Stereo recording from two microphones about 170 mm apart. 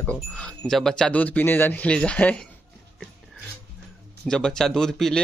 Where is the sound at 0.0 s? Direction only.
5° left (ahead or behind).